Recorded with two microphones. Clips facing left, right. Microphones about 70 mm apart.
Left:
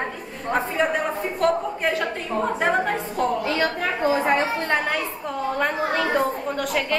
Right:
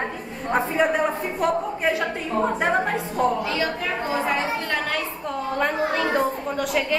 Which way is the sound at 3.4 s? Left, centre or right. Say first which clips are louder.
Left 2 dB; left.